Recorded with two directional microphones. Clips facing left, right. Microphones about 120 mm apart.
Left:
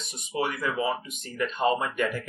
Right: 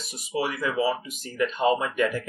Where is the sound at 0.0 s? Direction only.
5° right (ahead or behind).